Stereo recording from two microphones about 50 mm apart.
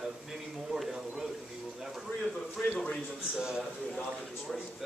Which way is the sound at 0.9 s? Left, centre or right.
Centre.